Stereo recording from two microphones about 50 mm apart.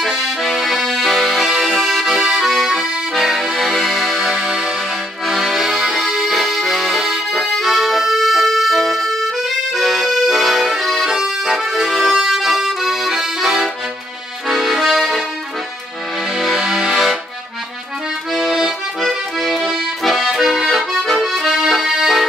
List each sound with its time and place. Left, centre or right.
0.0 s accordion: centre
4.4 s music: centre
5.2 s accordion: centre
16.3 s music: centre
16.9 s accordion: centre
18.3 s accordion: centre